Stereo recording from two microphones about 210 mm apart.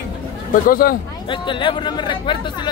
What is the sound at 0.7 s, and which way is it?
Speech, 45° left (ahead or behind).